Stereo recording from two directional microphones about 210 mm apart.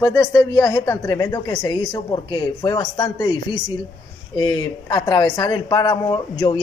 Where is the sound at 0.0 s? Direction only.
5° left (ahead or behind).